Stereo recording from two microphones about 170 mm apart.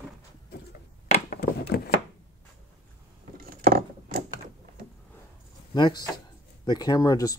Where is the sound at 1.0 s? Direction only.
40° left (ahead or behind).